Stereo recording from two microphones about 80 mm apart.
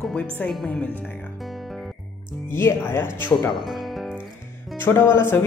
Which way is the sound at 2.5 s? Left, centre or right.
Left.